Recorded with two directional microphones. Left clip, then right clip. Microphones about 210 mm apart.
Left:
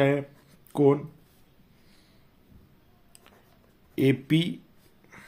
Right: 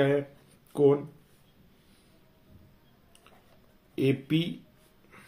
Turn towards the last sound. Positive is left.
turn(degrees=45)  # may be behind; listen again after turning